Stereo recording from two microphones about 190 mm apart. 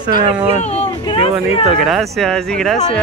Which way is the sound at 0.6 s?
35° left (ahead or behind).